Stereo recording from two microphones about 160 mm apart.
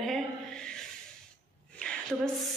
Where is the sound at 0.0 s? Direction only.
Centre (ahead or behind).